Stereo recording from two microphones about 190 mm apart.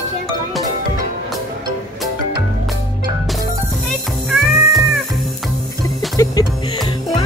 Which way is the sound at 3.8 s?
Centre (ahead or behind).